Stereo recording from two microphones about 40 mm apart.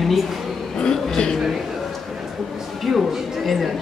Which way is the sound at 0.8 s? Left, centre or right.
Centre.